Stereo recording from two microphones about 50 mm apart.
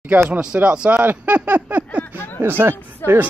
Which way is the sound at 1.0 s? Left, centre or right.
Right.